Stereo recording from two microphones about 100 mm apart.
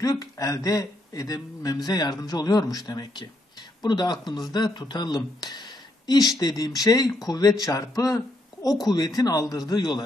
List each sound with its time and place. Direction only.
0.0 s speech: 35° left (ahead or behind)